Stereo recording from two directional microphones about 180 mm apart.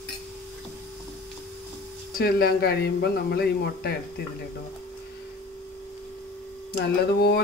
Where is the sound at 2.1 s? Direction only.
60° left (ahead or behind).